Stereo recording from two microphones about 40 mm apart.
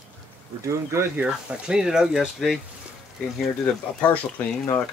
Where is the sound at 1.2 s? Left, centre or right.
Right.